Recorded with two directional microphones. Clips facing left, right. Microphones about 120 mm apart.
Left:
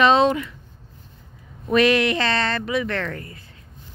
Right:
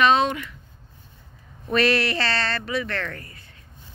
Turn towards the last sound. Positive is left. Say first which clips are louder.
# left 4 dB
turn(degrees=25)  # may be behind; listen again after turning